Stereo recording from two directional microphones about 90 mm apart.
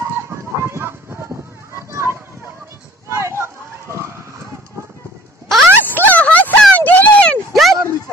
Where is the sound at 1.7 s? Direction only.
30° right (ahead or behind).